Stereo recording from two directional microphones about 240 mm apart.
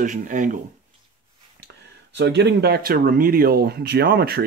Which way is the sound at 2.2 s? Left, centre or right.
Right.